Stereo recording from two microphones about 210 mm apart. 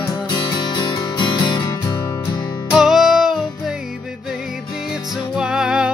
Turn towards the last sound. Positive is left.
turn(degrees=-5)  # may be behind; listen again after turning